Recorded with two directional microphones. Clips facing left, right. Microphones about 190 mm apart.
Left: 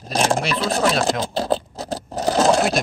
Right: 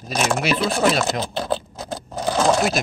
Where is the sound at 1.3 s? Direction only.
35° left (ahead or behind).